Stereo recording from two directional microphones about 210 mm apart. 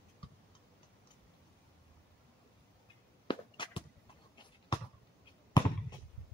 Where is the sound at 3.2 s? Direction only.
25° left (ahead or behind).